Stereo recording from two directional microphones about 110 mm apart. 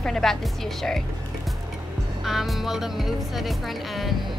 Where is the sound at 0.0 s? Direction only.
5° left (ahead or behind).